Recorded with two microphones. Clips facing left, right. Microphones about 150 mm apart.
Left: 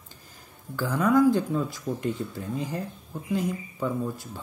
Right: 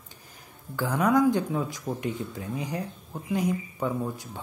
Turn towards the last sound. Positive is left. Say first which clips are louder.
# left 1 dB
turn(degrees=-15)  # may be behind; listen again after turning